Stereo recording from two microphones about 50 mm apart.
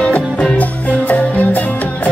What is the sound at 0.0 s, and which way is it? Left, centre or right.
Music, left.